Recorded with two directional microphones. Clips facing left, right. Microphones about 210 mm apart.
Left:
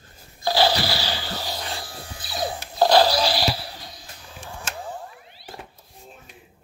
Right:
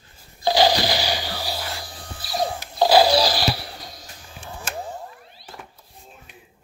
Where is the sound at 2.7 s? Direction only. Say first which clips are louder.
Right 1 dB; 10° right (ahead or behind).